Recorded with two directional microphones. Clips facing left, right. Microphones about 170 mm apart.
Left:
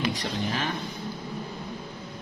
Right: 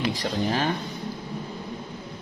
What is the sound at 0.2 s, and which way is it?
Speech, 35° right (ahead or behind).